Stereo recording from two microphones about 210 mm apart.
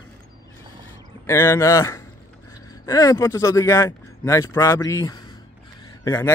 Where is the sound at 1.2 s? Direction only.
10° left (ahead or behind).